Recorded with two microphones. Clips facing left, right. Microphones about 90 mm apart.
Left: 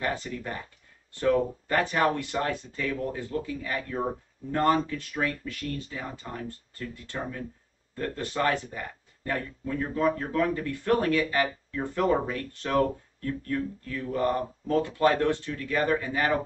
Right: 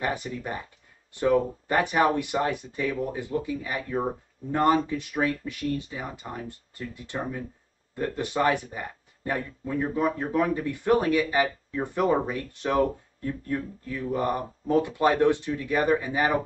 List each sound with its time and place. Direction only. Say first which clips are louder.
0.0 s speech: right 1 dB; 15° right (ahead or behind)